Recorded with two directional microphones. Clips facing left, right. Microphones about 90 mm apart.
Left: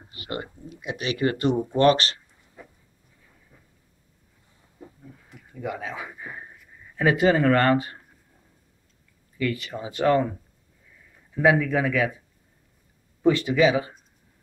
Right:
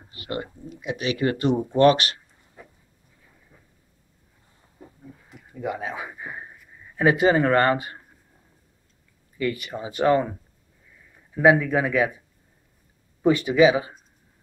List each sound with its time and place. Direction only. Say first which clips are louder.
0.2 s speech: right 2 dB; 5° left (ahead or behind)
5.6 s speech: right 2 dB; 20° right (ahead or behind)
9.4 s speech: right 1 dB; 10° right (ahead or behind)
11.5 s speech: right 1 dB; 15° right (ahead or behind)
13.2 s speech: right 2 dB; 10° right (ahead or behind)